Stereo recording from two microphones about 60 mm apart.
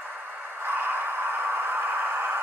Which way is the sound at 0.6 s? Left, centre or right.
Right.